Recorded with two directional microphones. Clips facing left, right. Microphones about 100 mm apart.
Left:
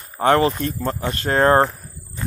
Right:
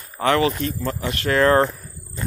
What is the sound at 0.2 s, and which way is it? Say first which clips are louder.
Speech: left 2 dB; 40° left (ahead or behind).